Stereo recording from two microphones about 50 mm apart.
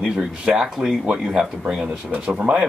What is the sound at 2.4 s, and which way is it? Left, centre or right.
Speech, right.